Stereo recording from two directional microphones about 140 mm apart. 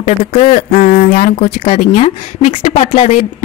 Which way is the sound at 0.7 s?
65° left (ahead or behind).